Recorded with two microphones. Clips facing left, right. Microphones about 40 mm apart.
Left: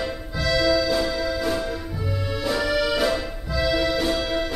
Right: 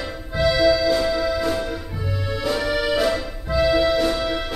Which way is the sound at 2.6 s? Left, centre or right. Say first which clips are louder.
Left 1 dB; right.